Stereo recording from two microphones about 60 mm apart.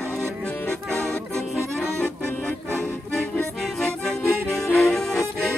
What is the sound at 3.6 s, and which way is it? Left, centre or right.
Accordion, centre.